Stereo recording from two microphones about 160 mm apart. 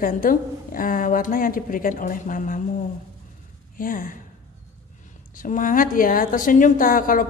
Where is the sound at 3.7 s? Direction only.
60° left (ahead or behind).